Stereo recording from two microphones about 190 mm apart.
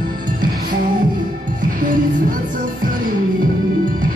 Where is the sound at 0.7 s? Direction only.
45° right (ahead or behind).